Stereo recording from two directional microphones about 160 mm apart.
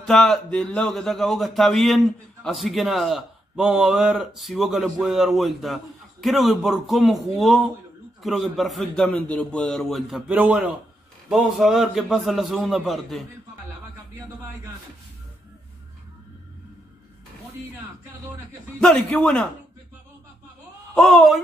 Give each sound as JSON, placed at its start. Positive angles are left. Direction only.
{"t": 0.0, "sound": "a man's voice", "side_deg": 5}
{"t": 18.8, "sound": "a man's voice", "side_deg": 5}
{"t": 20.9, "sound": "a man's voice", "side_deg": 0}